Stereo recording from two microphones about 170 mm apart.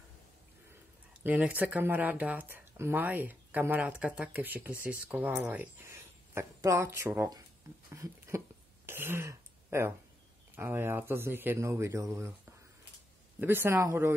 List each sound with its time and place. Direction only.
1.1 s speech: 10° right (ahead or behind)
8.8 s throat clearing: 15° right (ahead or behind)
10.5 s speech: 10° right (ahead or behind)